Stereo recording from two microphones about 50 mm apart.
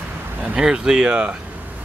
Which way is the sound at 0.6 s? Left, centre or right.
Centre.